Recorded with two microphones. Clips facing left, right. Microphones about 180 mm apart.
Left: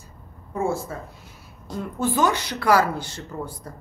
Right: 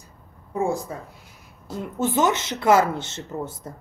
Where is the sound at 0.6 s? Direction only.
15° right (ahead or behind).